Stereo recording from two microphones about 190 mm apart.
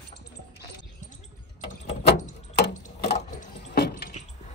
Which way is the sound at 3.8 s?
60° left (ahead or behind).